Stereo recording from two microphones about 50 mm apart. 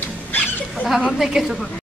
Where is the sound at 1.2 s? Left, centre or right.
Centre.